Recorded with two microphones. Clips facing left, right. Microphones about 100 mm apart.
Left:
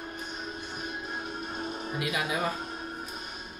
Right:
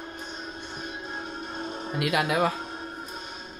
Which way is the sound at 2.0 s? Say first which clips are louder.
Right 7 dB; 65° right (ahead or behind).